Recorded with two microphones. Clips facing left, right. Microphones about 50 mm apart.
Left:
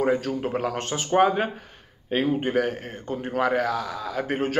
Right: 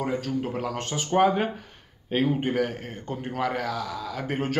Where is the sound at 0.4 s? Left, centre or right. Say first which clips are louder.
Left 3 dB; left.